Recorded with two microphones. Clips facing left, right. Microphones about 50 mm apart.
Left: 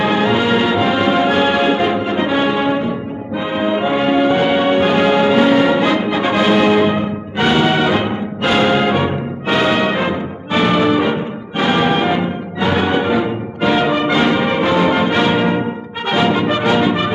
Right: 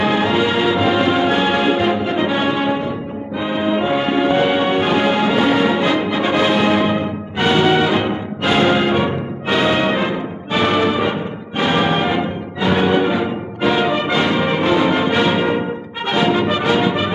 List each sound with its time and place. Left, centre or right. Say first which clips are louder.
0.0 s music: left 1 dB; centre
3.3 s brass instrument: left 1 dB; centre
3.9 s music: left 4 dB; centre
8.5 s brass instrument: left 1 dB; centre
12.5 s music: right 1 dB; centre
14.1 s brass instrument: left 2 dB; centre